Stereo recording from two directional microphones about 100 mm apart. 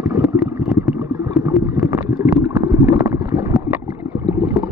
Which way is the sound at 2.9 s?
30° right (ahead or behind).